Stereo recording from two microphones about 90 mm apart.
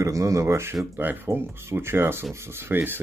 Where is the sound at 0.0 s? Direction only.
40° right (ahead or behind).